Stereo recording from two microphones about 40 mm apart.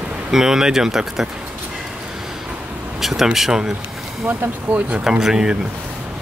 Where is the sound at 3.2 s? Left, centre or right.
Centre.